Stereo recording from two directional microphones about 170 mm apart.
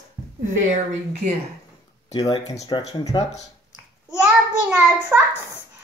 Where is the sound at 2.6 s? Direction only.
25° left (ahead or behind).